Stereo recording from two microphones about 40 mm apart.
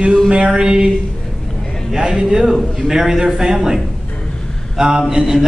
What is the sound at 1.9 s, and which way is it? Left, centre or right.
A man's voice, centre.